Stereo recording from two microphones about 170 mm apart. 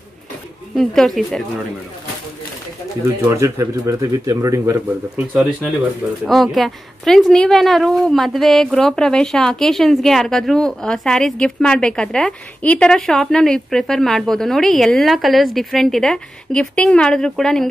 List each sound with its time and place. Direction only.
0.7 s speech: centre (ahead or behind)
3.2 s speech: 15° right (ahead or behind)
6.2 s speech: centre (ahead or behind)